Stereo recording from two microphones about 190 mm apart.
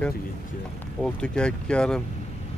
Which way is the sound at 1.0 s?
5° left (ahead or behind).